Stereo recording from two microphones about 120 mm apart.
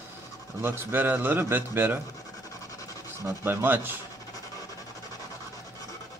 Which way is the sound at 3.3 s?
20° right (ahead or behind).